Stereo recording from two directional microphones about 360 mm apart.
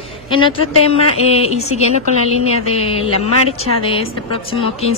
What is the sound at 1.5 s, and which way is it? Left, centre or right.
Speech, left.